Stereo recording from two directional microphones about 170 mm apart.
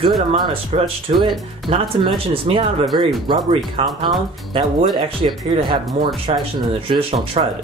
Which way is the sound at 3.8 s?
35° right (ahead or behind).